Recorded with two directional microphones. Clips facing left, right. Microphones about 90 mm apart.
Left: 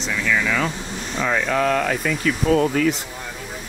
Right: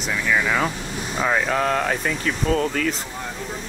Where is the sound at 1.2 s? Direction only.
35° right (ahead or behind).